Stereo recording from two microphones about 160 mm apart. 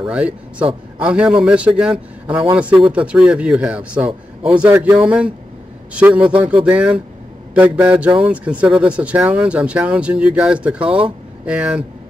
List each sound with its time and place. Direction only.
0.0 s speech: 5° right (ahead or behind)
10.9 s speech: 35° right (ahead or behind)
11.4 s speech: 5° right (ahead or behind)